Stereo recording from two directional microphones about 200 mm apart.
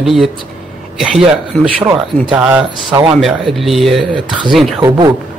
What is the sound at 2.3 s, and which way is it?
Speech, 5° right (ahead or behind).